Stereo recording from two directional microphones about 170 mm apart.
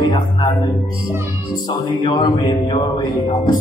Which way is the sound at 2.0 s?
30° left (ahead or behind).